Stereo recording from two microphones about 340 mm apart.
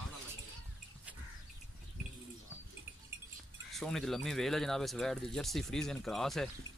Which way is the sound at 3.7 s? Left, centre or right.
Centre.